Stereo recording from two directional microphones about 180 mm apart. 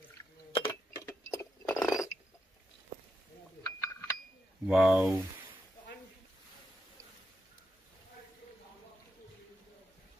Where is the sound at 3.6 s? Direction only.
20° left (ahead or behind).